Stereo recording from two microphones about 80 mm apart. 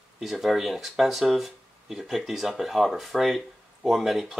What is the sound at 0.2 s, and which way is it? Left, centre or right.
Speech, centre.